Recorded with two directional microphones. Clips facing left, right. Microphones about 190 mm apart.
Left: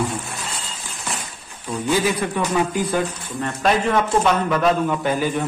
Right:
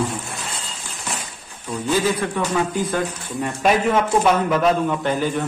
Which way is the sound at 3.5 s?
10° right (ahead or behind).